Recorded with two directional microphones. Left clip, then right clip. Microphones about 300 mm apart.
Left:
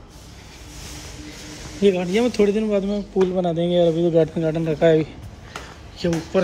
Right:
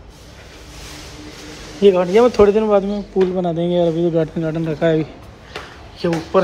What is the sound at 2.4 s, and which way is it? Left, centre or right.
Speech, centre.